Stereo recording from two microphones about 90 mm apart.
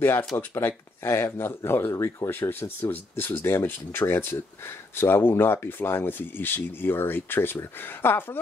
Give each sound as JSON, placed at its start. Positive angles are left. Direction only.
{"t": 0.4, "sound": "speech", "side_deg": 25}